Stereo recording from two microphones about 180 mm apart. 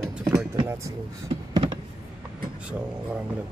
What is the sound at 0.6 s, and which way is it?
Speech, 15° right (ahead or behind).